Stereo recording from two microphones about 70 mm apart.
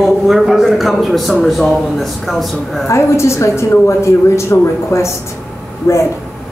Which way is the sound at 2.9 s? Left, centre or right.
Left.